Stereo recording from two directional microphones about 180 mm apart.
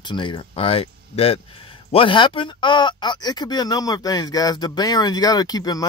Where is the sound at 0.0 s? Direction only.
25° left (ahead or behind).